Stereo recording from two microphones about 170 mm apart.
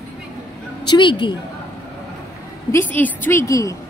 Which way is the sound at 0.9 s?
25° left (ahead or behind).